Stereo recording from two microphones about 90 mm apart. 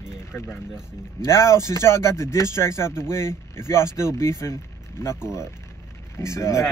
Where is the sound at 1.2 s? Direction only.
30° left (ahead or behind).